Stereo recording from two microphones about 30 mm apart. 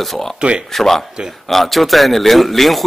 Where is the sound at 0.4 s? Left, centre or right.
Right.